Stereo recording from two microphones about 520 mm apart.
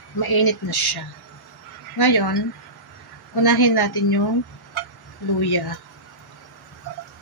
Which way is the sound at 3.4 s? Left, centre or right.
Left.